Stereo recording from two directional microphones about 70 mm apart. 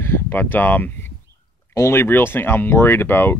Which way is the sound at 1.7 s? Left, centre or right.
Left.